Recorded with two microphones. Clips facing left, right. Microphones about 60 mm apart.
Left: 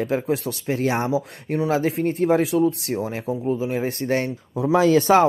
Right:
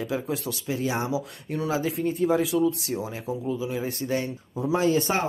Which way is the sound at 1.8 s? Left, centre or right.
Left.